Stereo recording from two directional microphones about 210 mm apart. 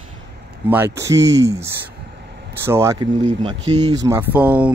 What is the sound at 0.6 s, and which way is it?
Speech, 10° right (ahead or behind).